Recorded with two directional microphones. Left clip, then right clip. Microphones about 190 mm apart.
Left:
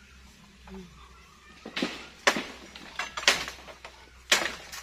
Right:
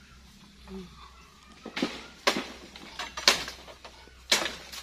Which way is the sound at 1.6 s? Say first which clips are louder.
Even; 55° left (ahead or behind).